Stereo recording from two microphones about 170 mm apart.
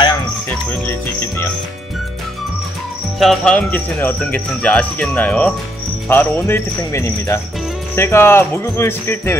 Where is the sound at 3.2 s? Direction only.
5° left (ahead or behind).